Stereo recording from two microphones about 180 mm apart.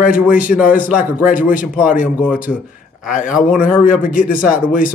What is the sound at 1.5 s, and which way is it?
Speech, 10° right (ahead or behind).